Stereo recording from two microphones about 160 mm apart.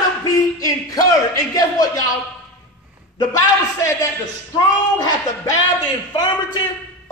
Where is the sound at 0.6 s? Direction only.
20° left (ahead or behind).